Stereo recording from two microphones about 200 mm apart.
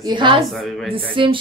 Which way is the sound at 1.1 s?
25° right (ahead or behind).